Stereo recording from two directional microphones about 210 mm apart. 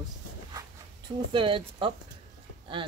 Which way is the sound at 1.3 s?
25° right (ahead or behind).